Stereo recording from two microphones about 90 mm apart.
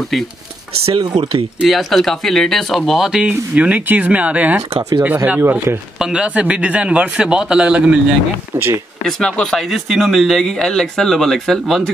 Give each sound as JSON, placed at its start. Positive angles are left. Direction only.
{"t": 0.8, "sound": "speech", "side_deg": -85}
{"t": 1.7, "sound": "speech", "side_deg": 0}
{"t": 3.3, "sound": "a man's voice", "side_deg": -15}
{"t": 5.9, "sound": "a man's voice", "side_deg": -10}
{"t": 9.0, "sound": "speech", "side_deg": 5}